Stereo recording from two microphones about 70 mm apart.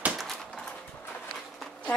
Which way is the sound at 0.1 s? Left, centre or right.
Centre.